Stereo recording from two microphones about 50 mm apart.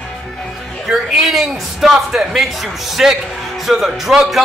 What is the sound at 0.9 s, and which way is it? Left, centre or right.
Speech, centre.